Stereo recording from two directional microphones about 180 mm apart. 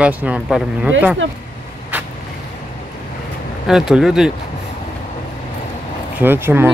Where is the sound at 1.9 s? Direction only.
10° right (ahead or behind).